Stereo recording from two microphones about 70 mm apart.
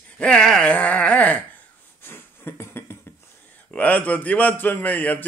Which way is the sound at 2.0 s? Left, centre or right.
Left.